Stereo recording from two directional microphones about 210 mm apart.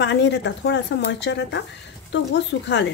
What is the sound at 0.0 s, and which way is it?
Speech, 55° left (ahead or behind).